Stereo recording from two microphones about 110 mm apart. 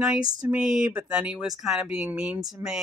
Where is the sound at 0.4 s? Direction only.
10° right (ahead or behind).